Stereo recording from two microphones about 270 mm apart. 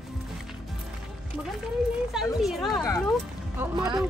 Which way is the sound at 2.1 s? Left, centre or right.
Centre.